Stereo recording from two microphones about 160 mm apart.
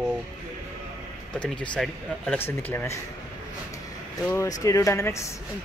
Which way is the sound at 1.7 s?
5° left (ahead or behind).